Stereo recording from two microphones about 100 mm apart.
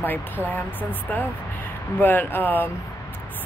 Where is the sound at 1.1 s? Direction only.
20° left (ahead or behind).